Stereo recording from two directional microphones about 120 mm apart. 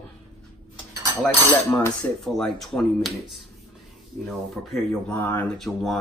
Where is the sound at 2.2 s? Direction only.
5° left (ahead or behind).